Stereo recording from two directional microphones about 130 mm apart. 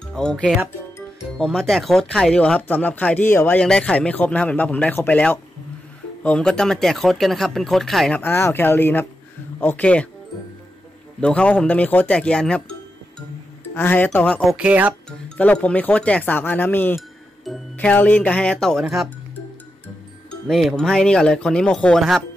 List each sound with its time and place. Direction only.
0.1 s speech: 5° left (ahead or behind)
8.2 s speech: 20° left (ahead or behind)
11.1 s speech: 10° left (ahead or behind)
13.7 s speech: 15° left (ahead or behind)
14.4 s speech: centre (ahead or behind)
14.7 s speech: 10° right (ahead or behind)
15.0 s speech: 10° left (ahead or behind)
20.4 s speech: centre (ahead or behind)